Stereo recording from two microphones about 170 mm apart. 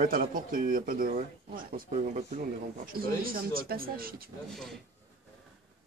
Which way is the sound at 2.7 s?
60° right (ahead or behind).